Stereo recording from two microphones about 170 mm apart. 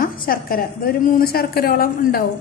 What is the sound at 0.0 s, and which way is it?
A woman's voice, 60° left (ahead or behind).